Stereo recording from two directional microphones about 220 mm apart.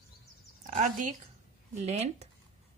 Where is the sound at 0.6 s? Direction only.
35° right (ahead or behind).